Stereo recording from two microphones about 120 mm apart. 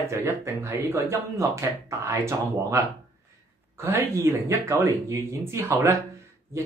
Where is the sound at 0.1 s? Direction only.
20° right (ahead or behind).